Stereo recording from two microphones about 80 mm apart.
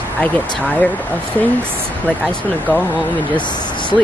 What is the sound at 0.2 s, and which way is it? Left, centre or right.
Speech, centre.